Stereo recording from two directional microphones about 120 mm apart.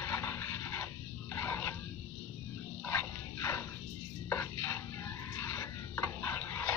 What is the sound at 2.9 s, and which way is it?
Music, 20° left (ahead or behind).